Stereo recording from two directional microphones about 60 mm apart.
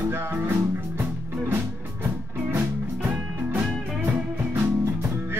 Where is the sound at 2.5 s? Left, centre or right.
Right.